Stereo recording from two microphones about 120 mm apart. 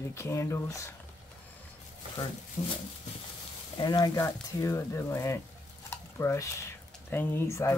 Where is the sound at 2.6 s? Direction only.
35° left (ahead or behind).